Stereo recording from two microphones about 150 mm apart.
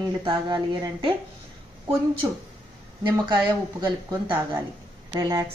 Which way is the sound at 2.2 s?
25° right (ahead or behind).